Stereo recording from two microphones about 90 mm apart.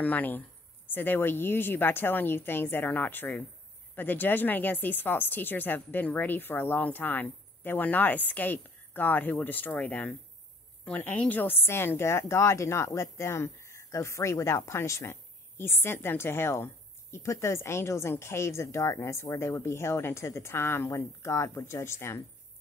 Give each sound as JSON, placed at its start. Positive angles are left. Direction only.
{"t": 0.0, "sound": "a woman's voice", "side_deg": 20}